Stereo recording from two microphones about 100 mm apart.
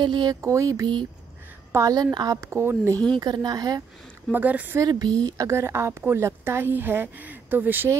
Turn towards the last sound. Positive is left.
turn(degrees=-20)  # may be behind; listen again after turning